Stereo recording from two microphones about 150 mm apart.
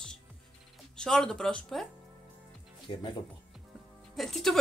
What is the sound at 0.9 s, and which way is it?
Speech, 5° left (ahead or behind).